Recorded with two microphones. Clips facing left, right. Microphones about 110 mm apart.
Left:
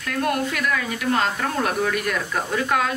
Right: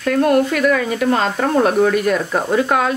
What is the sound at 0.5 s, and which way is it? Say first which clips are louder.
Speech: right 8 dB; 45° right (ahead or behind).